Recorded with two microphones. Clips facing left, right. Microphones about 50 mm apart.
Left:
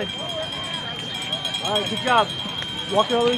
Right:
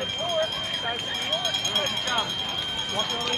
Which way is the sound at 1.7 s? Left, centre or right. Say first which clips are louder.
Left 11 dB; centre.